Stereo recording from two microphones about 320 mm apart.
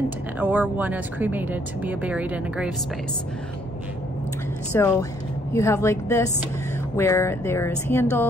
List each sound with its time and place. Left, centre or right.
0.4 s speech: centre
4.7 s speech: centre